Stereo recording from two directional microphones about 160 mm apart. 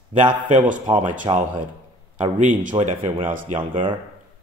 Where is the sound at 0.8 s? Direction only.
30° right (ahead or behind).